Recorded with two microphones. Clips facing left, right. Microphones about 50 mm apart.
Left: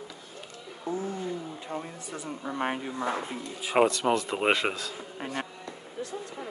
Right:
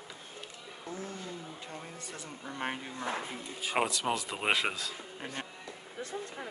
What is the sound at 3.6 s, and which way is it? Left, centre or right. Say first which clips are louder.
Speech: left 8 dB; centre.